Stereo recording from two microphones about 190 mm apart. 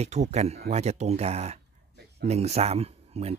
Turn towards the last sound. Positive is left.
turn(degrees=-35)  # may be behind; listen again after turning